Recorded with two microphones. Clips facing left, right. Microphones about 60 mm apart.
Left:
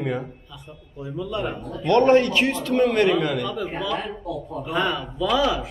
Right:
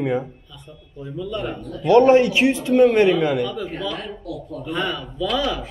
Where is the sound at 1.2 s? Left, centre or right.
Centre.